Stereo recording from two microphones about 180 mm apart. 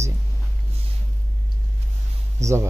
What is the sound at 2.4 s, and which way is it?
Speech, 40° right (ahead or behind).